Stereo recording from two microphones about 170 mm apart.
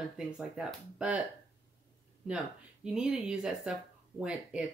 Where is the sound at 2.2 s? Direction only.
5° right (ahead or behind).